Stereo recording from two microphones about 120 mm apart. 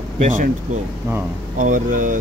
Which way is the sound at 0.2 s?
90° right.